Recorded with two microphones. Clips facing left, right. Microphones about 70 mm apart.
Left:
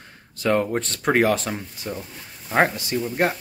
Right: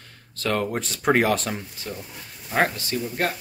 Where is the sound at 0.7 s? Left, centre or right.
Centre.